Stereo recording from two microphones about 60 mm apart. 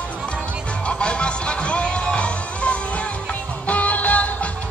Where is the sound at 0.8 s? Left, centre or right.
Centre.